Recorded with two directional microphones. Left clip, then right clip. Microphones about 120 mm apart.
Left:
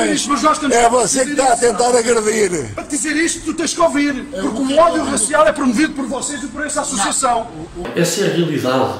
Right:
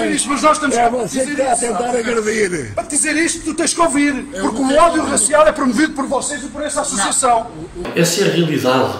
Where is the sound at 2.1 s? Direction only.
35° left (ahead or behind).